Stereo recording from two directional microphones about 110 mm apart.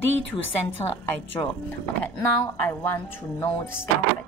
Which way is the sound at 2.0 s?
15° left (ahead or behind).